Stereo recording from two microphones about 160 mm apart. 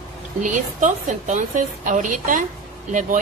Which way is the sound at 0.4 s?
50° right (ahead or behind).